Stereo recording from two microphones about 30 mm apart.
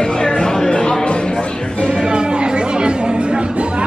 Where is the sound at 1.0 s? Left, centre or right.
Left.